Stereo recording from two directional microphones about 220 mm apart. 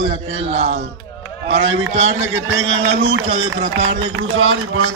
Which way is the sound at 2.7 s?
25° right (ahead or behind).